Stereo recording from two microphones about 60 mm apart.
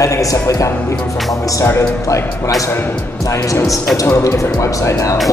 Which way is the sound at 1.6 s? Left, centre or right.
Left.